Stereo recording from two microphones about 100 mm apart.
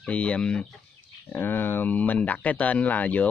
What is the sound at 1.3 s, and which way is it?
Speech, 20° left (ahead or behind).